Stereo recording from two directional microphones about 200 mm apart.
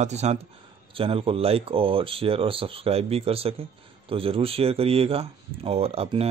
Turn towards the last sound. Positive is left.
turn(degrees=-30)  # may be behind; listen again after turning